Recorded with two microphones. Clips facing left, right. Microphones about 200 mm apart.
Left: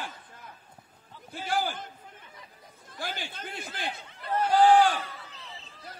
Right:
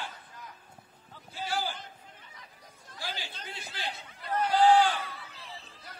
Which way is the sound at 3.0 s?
50° left (ahead or behind).